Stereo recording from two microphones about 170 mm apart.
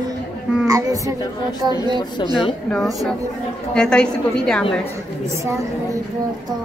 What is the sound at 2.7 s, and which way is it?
A woman's voice, centre (ahead or behind).